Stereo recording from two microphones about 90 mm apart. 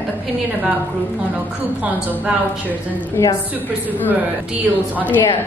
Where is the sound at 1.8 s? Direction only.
15° right (ahead or behind).